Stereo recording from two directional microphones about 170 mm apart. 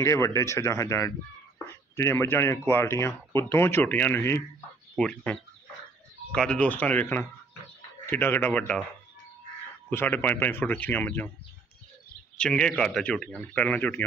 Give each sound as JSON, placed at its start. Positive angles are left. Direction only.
{"t": 0.0, "sound": "speech", "side_deg": 15}
{"t": 9.8, "sound": "speech", "side_deg": 10}
{"t": 12.4, "sound": "speech", "side_deg": 5}